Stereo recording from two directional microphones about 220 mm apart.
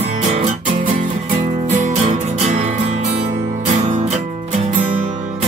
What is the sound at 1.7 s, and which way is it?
Music, 35° right (ahead or behind).